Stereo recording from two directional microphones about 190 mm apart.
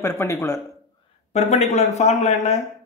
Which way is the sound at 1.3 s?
35° left (ahead or behind).